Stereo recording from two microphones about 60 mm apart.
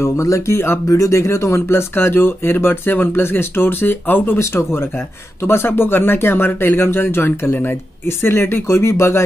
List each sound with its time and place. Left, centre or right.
0.0 s speech: left